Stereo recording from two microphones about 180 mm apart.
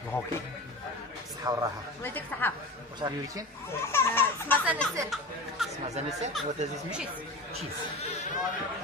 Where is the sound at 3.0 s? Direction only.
20° right (ahead or behind).